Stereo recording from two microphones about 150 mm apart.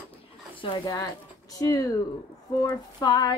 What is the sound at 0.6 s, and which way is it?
Speech, 30° left (ahead or behind).